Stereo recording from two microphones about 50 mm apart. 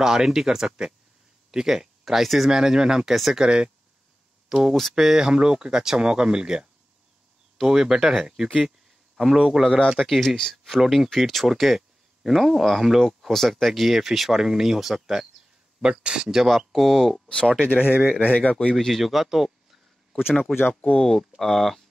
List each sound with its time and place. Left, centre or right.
0.0 s speech: centre
4.7 s speech: centre
5.0 s speech: centre
8.6 s a sound: centre
9.9 s speech: centre
13.3 s speech: centre
15.8 s speech: centre
16.3 s speech: centre
17.7 s speech: right
18.2 s speech: left
18.9 s speech: centre
20.5 s speech: centre